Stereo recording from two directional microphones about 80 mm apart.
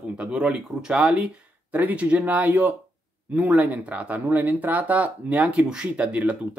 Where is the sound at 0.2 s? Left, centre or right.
Centre.